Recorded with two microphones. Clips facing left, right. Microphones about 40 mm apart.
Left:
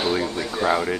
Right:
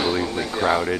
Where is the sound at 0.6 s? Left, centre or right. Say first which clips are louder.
Right 1 dB; centre.